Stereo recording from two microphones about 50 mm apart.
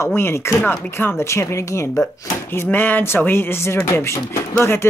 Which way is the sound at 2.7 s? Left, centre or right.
Left.